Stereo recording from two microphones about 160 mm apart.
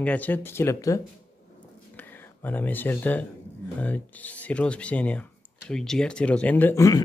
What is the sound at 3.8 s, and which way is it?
Speech, 10° left (ahead or behind).